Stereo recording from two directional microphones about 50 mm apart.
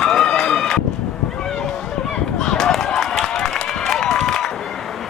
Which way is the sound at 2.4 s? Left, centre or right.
Centre.